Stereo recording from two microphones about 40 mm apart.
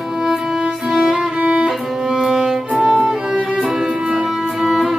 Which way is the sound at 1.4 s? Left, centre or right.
Right.